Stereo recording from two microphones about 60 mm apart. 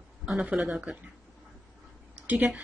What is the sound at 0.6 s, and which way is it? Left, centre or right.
Speech, centre.